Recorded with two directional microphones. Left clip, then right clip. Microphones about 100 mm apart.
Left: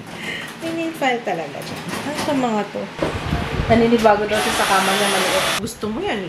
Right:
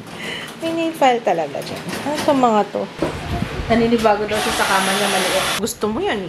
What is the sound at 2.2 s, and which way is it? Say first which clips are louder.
Speech: right 6 dB; 20° right (ahead or behind).